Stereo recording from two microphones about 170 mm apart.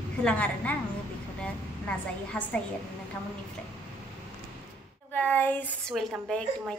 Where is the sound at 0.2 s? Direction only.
5° left (ahead or behind).